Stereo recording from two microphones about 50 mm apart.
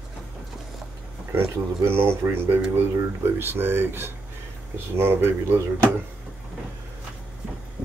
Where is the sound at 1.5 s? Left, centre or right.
Right.